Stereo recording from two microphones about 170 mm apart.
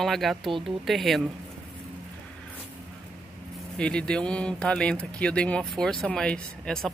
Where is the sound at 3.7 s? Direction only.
5° left (ahead or behind).